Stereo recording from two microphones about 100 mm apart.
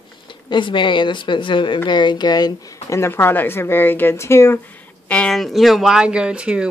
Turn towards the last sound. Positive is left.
turn(degrees=-10)  # may be behind; listen again after turning